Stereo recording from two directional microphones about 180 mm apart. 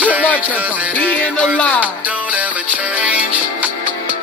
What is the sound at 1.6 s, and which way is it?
Music, 10° left (ahead or behind).